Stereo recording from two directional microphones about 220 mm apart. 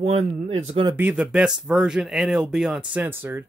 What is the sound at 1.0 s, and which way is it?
Speech, 5° right (ahead or behind).